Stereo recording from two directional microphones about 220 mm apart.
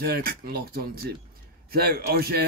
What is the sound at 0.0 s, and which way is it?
A man's voice, 45° right (ahead or behind).